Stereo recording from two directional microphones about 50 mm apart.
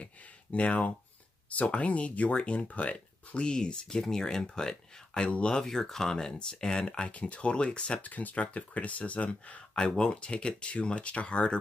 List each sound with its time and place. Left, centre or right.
0.0 s a sound: left
1.5 s speech: left
5.6 s speech: centre
8.0 s speech: left